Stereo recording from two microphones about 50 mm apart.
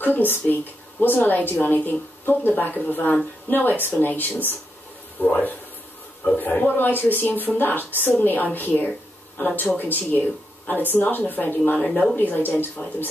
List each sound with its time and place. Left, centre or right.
0.0 s a woman's voice: left
11.8 s speech: left
12.2 s a woman's voice: left